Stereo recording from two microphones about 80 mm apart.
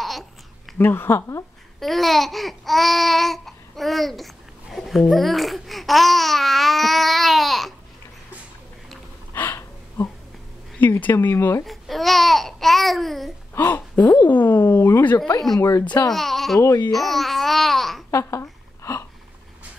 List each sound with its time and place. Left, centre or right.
0.7 s speech: left
1.8 s babbling: centre
9.3 s gasp: left
10.8 s speech: left
11.6 s speech: centre
13.7 s speech: left
15.1 s speech: left
16.1 s babbling: centre
18.1 s a sound: left